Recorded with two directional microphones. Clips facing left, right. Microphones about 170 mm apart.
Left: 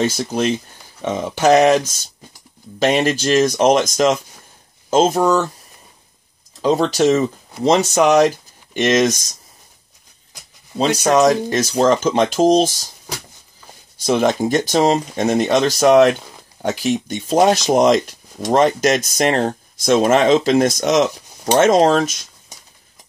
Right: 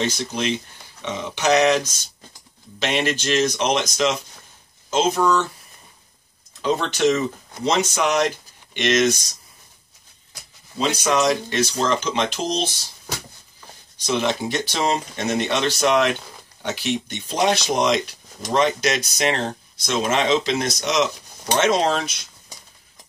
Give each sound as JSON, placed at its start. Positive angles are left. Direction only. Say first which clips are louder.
{"t": 0.1, "sound": "speech", "louder": "left 5 dB", "side_deg": 45}
{"t": 2.8, "sound": "speech", "louder": "left 7 dB", "side_deg": 40}
{"t": 6.6, "sound": "speech", "louder": "left 5 dB", "side_deg": 35}
{"t": 11.0, "sound": "speech", "louder": "left 6 dB", "side_deg": 45}
{"t": 14.0, "sound": "speech", "louder": "left 6 dB", "side_deg": 45}